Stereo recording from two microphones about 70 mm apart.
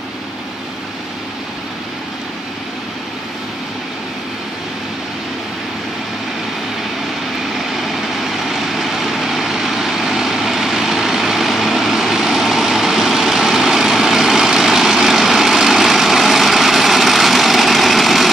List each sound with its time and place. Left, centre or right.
7.7 s vehicle: centre